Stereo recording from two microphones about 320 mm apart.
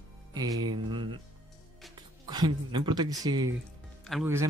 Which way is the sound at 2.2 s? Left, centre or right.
Centre.